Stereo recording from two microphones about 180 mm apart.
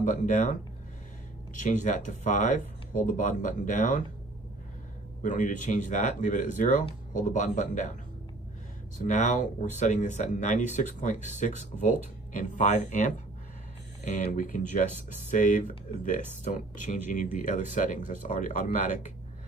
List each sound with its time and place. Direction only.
0.0 s speech: 45° left (ahead or behind)
5.2 s speech: 45° left (ahead or behind)